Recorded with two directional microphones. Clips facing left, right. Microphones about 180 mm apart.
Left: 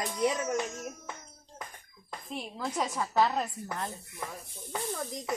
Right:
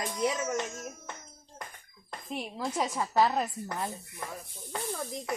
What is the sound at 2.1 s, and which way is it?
A woman's voice, 5° right (ahead or behind).